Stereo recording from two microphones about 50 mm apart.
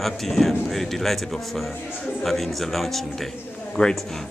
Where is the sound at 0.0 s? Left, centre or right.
Centre.